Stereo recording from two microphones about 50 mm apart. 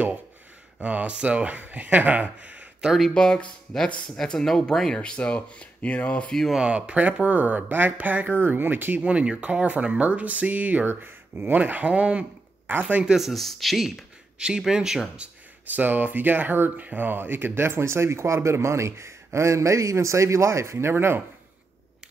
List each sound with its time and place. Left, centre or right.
0.7 s speech: right
2.8 s speech: centre
3.7 s speech: centre; by 6.3 s left
6.6 s speech: right
9.0 s speech: right
11.0 s speech: right
11.5 s speech: right
13.0 s speech: centre
13.3 s speech: centre
15.7 s speech: right
17.6 s speech: right